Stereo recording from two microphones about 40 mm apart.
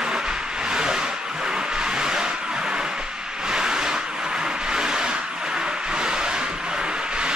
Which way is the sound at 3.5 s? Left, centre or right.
Centre.